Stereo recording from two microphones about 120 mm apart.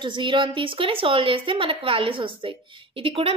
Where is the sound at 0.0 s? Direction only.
45° right (ahead or behind).